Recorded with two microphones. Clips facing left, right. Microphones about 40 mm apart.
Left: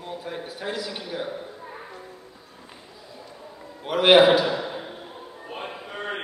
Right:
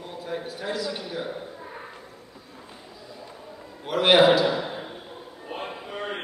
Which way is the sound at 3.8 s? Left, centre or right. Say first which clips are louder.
Left 3 dB; centre.